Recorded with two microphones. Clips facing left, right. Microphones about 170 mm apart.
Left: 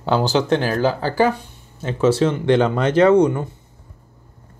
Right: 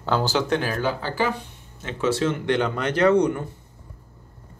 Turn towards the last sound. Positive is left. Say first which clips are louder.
# left 5 dB
turn(degrees=25)  # may be behind; listen again after turning